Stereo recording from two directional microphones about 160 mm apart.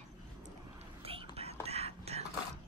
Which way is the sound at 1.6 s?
40° right (ahead or behind).